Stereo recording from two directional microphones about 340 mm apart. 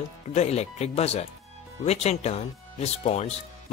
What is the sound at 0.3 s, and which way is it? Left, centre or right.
Speech, centre.